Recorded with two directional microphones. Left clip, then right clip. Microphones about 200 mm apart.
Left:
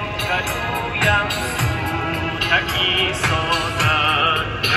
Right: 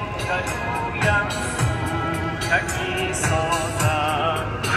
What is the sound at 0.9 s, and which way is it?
Music, 5° left (ahead or behind).